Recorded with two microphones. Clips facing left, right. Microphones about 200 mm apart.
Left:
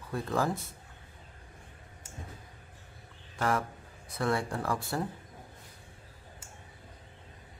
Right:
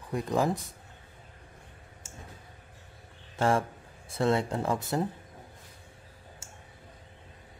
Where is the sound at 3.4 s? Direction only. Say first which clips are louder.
Right 4 dB; 25° right (ahead or behind).